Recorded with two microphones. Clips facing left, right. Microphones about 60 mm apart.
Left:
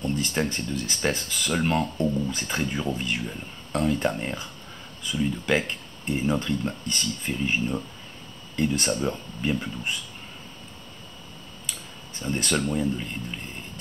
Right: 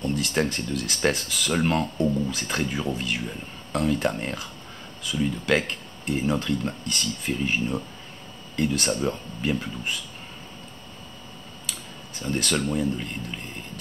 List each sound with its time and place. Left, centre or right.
0.0 s speech: centre
5.1 s speech: centre
5.7 s speech: centre
12.2 s speech: centre